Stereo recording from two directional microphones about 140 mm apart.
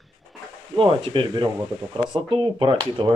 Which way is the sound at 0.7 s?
40° right (ahead or behind).